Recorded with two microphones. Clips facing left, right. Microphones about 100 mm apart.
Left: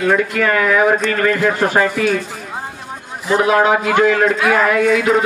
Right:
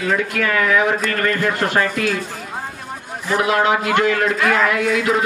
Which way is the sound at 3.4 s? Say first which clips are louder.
Left 3 dB; 45° left (ahead or behind).